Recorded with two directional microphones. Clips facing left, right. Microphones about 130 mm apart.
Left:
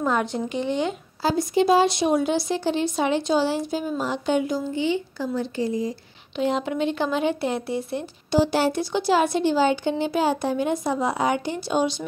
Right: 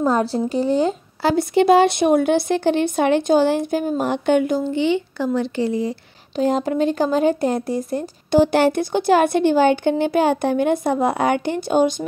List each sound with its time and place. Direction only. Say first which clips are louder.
0.0 s a woman's voice: right 5 dB; 35° right (ahead or behind)
1.2 s a woman's voice: right 4 dB; 65° right (ahead or behind)
6.3 s speech: right 5 dB; 40° right (ahead or behind)